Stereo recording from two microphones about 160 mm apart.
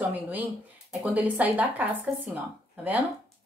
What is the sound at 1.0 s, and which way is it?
Speech, 10° right (ahead or behind).